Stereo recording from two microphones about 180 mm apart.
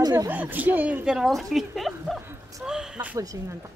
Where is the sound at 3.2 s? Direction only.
20° right (ahead or behind).